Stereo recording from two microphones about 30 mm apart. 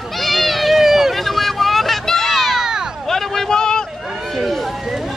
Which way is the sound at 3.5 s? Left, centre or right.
Left.